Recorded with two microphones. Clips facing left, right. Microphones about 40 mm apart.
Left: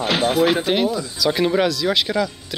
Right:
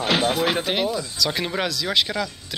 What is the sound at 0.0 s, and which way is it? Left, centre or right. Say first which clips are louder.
Speech: left 3 dB; centre.